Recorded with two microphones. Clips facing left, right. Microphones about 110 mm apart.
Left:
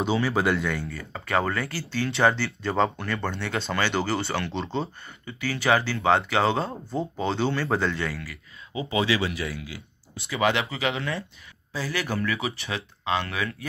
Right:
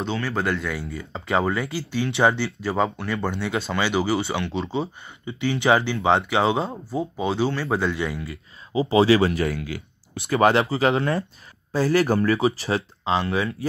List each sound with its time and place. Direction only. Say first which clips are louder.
0.0 s speech: left 2 dB; 10° left (ahead or behind)
0.9 s speech: right 5 dB; 20° right (ahead or behind)
5.4 s speech: right 4 dB; 20° right (ahead or behind); by 10.4 s 55° right (ahead or behind)
10.4 s speech: right 6 dB; 35° right (ahead or behind)